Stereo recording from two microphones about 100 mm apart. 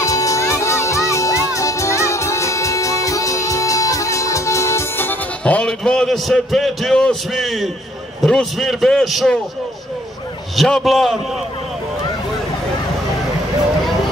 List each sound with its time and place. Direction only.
0.0 s music: 35° left (ahead or behind)
5.4 s a man's voice: 10° left (ahead or behind)
10.5 s a man's voice: centre (ahead or behind)